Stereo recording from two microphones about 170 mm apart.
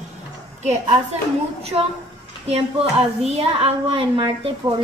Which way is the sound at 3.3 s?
35° right (ahead or behind).